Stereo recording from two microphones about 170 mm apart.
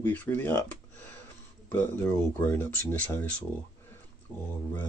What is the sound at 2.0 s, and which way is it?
Speech, 15° left (ahead or behind).